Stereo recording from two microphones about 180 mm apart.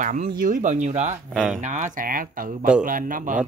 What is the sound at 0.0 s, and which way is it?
Speech, 45° right (ahead or behind).